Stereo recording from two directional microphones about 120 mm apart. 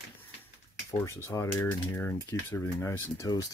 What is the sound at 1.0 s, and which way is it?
Speech, 25° left (ahead or behind).